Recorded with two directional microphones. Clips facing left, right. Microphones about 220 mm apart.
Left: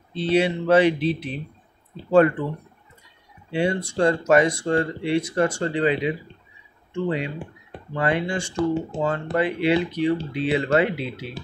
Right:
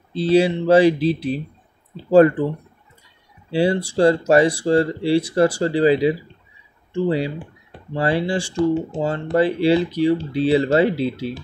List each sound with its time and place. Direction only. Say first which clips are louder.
0.1 s speech: right 5 dB; 35° right (ahead or behind)
3.5 s speech: right 4 dB; 30° right (ahead or behind)